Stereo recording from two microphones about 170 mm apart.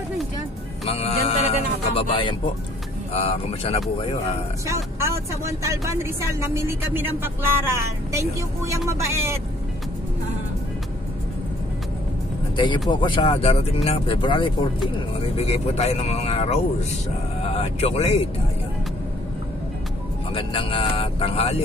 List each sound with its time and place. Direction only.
0.8 s speech: 35° left (ahead or behind)
4.6 s speech: 15° right (ahead or behind)
12.5 s speech: 30° left (ahead or behind)
20.3 s speech: 30° left (ahead or behind)